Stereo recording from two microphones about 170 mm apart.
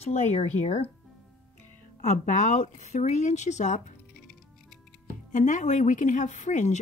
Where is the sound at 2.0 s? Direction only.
45° left (ahead or behind).